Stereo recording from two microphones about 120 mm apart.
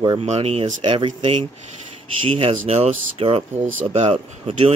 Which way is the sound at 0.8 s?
45° right (ahead or behind).